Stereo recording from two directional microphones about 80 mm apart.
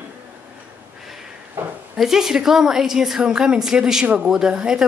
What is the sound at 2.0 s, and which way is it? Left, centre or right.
Speech, centre.